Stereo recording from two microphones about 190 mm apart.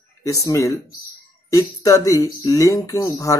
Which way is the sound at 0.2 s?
20° left (ahead or behind).